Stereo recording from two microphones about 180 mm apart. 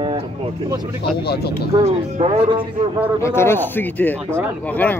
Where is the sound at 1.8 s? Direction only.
35° right (ahead or behind).